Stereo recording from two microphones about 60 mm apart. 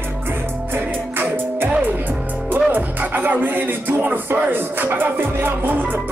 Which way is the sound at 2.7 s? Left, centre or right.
Right.